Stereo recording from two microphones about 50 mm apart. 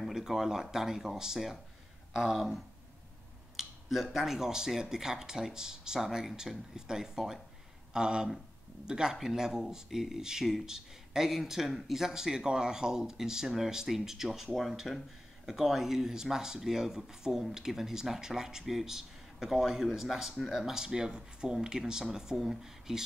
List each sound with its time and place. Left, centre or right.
0.0 s speech: centre
3.5 s speech: centre